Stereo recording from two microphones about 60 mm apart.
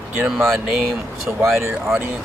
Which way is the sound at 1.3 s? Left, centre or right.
Right.